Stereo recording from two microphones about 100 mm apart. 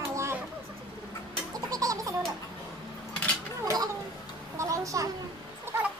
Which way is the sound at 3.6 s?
35° right (ahead or behind).